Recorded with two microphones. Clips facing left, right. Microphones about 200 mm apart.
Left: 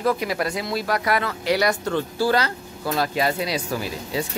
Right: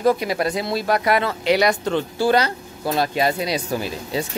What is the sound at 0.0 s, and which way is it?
Speech, 25° right (ahead or behind).